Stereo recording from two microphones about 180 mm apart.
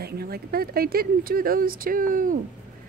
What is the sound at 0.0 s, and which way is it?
Speech, 60° right (ahead or behind).